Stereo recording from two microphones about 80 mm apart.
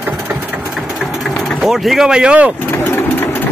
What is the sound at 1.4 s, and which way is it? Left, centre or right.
Speech, centre.